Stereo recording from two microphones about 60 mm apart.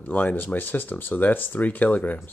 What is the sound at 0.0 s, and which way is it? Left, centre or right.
Speech, left.